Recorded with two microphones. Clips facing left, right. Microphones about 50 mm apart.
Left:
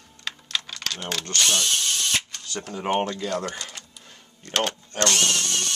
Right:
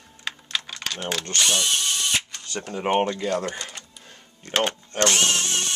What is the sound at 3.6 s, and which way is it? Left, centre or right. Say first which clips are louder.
Cash register: right 1 dB; centre.